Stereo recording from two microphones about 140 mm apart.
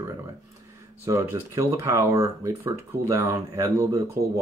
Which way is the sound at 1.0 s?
20° right (ahead or behind).